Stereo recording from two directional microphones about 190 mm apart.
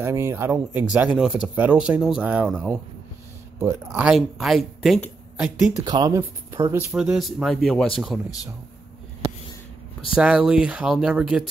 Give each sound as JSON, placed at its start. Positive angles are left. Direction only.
{"t": 0.0, "sound": "speech", "side_deg": -15}
{"t": 3.9, "sound": "speech", "side_deg": -5}
{"t": 5.9, "sound": "speech", "side_deg": -20}
{"t": 6.9, "sound": "speech", "side_deg": 0}
{"t": 10.1, "sound": "speech", "side_deg": -5}